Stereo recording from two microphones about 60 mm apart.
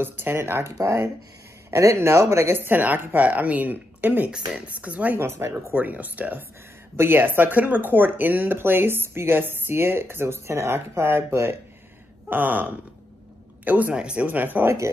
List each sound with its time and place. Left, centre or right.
0.0 s speech: right
0.7 s speech: right
1.7 s speech: right
5.1 s speech: right
5.7 s speech: right
12.3 s speech: right
13.9 s speech: centre
14.2 s speech: right